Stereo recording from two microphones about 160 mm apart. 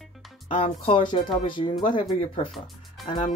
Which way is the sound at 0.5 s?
35° left (ahead or behind).